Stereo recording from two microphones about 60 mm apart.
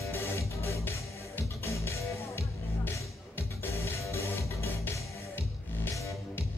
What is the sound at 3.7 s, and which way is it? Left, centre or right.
Music, left.